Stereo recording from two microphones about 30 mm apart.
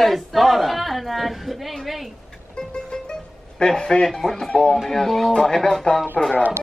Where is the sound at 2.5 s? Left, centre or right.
Left.